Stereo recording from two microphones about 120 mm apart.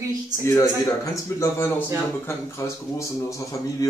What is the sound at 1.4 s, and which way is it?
Speech, 20° left (ahead or behind).